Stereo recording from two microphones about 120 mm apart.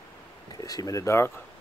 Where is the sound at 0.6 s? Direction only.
30° left (ahead or behind).